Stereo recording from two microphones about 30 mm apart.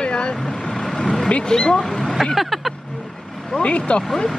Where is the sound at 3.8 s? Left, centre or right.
Left.